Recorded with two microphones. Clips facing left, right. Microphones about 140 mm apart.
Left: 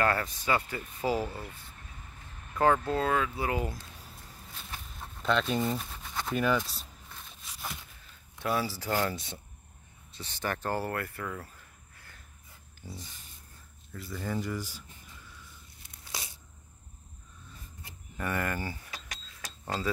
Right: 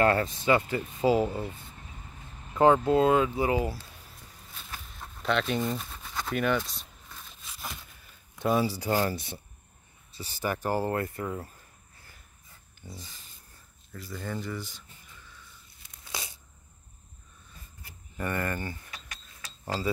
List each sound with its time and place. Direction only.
0.0 s speech: 25° right (ahead or behind)
5.2 s speech: centre (ahead or behind)
8.4 s speech: 20° right (ahead or behind)
10.1 s speech: 5° right (ahead or behind)
12.8 s speech: 5° left (ahead or behind)
18.1 s speech: centre (ahead or behind)